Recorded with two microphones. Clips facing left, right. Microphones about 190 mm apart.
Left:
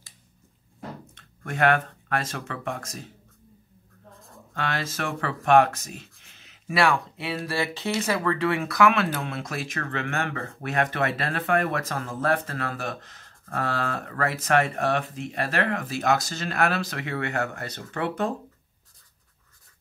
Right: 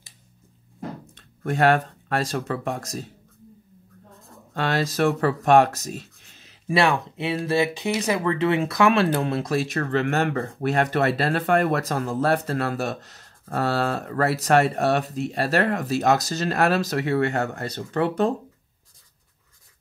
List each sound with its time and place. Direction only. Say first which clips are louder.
1.4 s speech: right 3 dB; 35° right (ahead or behind)
4.7 s speech: right 9 dB; 40° right (ahead or behind)
6.4 s speech: right 2 dB; 25° right (ahead or behind); by 18.1 s 40° right (ahead or behind)